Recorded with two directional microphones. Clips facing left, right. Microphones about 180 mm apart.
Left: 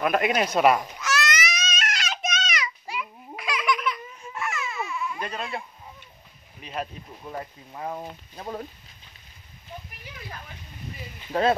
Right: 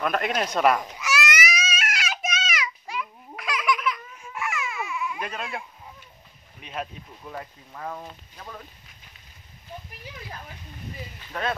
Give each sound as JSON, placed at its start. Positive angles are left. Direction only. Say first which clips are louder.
{"t": 0.0, "sound": "speech", "louder": "left 3 dB", "side_deg": 5}
{"t": 0.9, "sound": "baby cry", "louder": "even", "side_deg": -10}
{"t": 6.6, "sound": "speech", "louder": "left 1 dB", "side_deg": 0}
{"t": 7.2, "sound": "speech", "louder": "left 2 dB", "side_deg": 20}
{"t": 11.3, "sound": "speech", "louder": "left 7 dB", "side_deg": 30}